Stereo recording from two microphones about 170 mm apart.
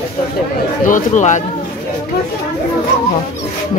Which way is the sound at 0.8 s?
50° left (ahead or behind).